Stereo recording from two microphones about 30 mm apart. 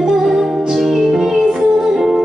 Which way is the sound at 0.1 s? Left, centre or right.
Centre.